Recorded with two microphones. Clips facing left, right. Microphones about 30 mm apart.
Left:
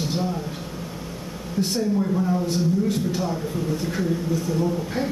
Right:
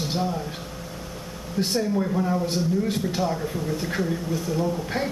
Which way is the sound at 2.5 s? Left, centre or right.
Right.